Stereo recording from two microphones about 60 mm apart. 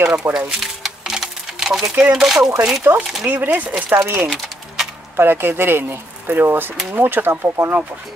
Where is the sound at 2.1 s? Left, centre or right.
Centre.